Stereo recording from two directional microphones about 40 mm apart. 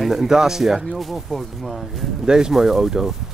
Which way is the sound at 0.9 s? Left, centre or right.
Centre.